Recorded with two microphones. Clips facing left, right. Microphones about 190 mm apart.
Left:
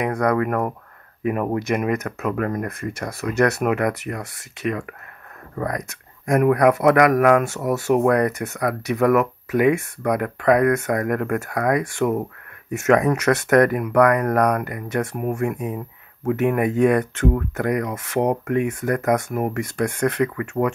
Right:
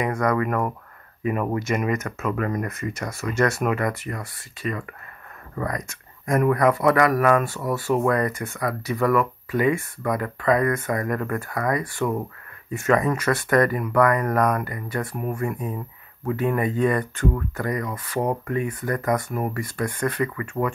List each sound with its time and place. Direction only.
0.0 s speech: 65° left (ahead or behind); by 17.3 s 90° left
17.6 s speech: 70° left (ahead or behind)